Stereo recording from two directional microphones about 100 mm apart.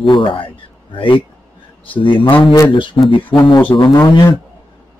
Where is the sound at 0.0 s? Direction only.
60° left (ahead or behind).